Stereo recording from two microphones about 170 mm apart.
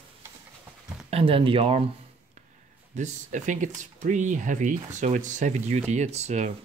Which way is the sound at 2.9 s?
45° right (ahead or behind).